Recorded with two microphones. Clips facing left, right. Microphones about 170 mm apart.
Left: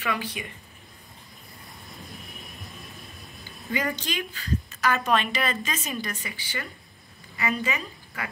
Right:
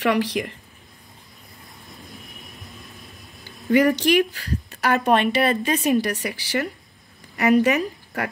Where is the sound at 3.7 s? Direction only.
70° right (ahead or behind).